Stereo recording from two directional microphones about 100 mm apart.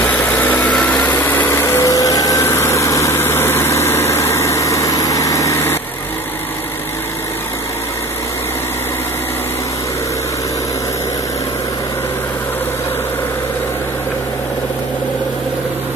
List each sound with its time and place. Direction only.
0.0 s vehicle: 15° left (ahead or behind)
1.2 s light engine: 20° left (ahead or behind)